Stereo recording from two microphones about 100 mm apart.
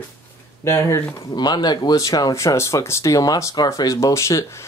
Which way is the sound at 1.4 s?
45° left (ahead or behind).